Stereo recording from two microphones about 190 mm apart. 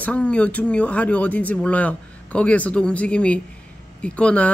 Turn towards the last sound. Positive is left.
turn(degrees=5)  # may be behind; listen again after turning